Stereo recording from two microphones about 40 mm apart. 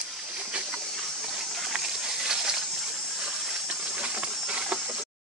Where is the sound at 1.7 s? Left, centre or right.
Centre.